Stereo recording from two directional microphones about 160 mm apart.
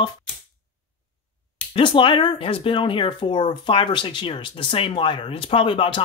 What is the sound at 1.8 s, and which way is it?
Speech, 30° left (ahead or behind).